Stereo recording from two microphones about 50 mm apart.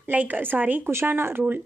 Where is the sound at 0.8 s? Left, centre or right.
Right.